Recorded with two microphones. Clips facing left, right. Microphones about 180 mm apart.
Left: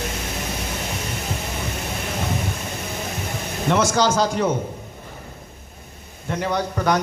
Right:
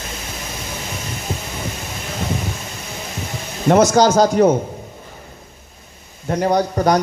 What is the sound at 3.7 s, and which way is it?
Speech, 40° right (ahead or behind).